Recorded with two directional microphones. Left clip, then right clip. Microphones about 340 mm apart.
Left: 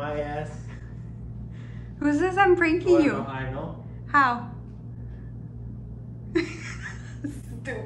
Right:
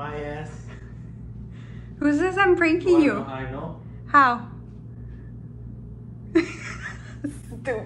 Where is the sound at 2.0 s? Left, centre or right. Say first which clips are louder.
Right 1 dB; centre.